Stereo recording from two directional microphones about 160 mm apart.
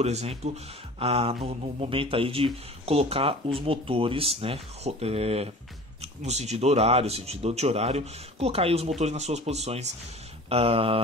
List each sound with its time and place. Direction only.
0.0 s speech: 40° right (ahead or behind)